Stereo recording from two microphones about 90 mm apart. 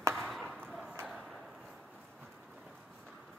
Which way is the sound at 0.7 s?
5° right (ahead or behind).